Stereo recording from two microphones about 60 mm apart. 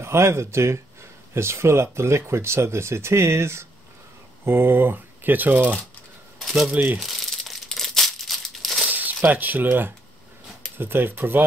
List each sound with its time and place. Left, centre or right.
0.0 s speech: right
6.4 s speech: centre
6.7 s speech: right
7.0 s crumpling: centre
8.8 s speech: right